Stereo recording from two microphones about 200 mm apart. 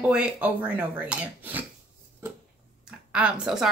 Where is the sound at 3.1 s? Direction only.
5° right (ahead or behind).